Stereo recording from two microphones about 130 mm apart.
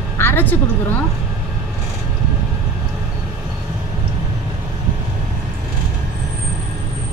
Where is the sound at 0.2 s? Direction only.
15° left (ahead or behind).